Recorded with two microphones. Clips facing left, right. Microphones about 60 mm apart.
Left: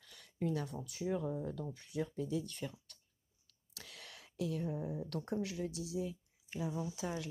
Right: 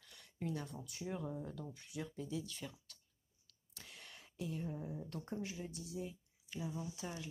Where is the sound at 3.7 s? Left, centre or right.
Left.